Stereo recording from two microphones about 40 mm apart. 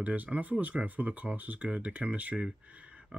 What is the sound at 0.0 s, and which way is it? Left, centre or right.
Speech, right.